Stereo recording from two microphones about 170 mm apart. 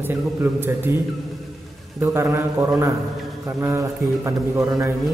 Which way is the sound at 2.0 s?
15° right (ahead or behind).